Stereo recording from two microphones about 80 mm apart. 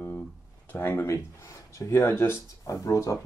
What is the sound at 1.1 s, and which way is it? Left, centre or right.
Speech, left.